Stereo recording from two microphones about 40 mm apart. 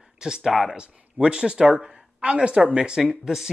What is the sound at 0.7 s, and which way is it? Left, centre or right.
Speech, right.